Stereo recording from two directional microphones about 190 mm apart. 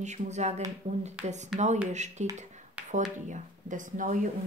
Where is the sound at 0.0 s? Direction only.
35° right (ahead or behind).